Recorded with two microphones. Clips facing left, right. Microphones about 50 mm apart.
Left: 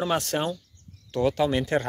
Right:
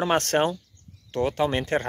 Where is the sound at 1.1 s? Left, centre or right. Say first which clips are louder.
Left 1 dB; right.